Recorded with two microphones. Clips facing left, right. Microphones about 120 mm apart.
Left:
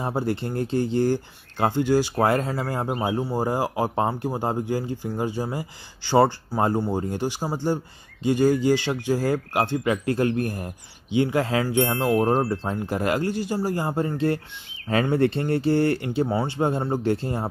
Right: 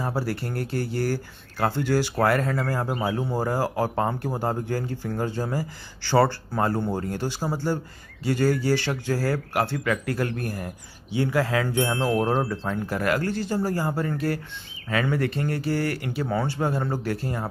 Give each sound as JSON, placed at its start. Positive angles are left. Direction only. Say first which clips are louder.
{"t": 0.0, "sound": "speech", "louder": "left 2 dB", "side_deg": 20}
{"t": 12.3, "sound": "speech", "louder": "left 2 dB", "side_deg": 35}
{"t": 12.7, "sound": "speech", "louder": "right 1 dB", "side_deg": 20}